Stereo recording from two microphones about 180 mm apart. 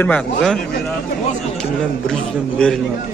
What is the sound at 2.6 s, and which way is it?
Speech, 5° left (ahead or behind).